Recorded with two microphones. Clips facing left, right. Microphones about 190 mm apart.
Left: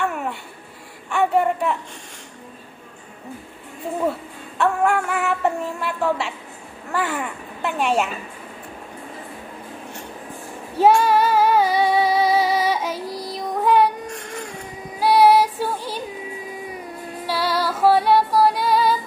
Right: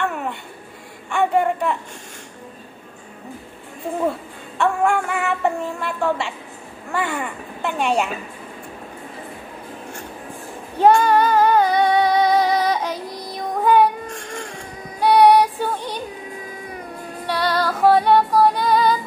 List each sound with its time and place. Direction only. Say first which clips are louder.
0.0 s a sound: even; 5° left (ahead or behind)
4.6 s a woman's voice: even; 5° left (ahead or behind)
10.8 s child singing: right 1 dB; 5° left (ahead or behind)
15.0 s music: right 2 dB; 5° left (ahead or behind)